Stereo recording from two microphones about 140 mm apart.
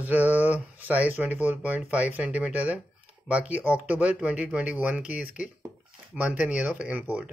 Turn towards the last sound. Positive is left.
turn(degrees=-10)  # may be behind; listen again after turning